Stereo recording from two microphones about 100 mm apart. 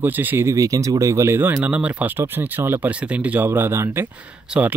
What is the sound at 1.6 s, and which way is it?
Speech, 15° right (ahead or behind).